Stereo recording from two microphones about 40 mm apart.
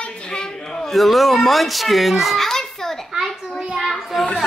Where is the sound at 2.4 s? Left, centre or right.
Centre.